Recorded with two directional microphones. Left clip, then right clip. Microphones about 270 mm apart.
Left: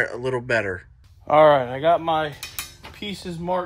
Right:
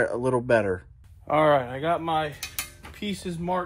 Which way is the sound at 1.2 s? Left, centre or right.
Left.